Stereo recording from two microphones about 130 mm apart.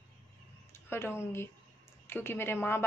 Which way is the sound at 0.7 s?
20° left (ahead or behind).